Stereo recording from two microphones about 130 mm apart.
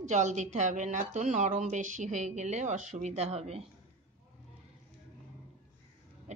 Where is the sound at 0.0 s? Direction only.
65° right (ahead or behind).